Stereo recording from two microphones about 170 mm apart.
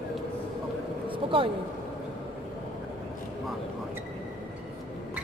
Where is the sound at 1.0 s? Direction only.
30° right (ahead or behind).